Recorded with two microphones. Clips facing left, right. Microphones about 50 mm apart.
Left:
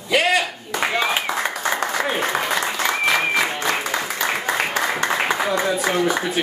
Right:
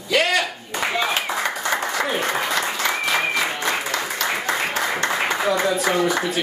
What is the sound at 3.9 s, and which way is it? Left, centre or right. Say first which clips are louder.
Applause: left 1 dB; centre.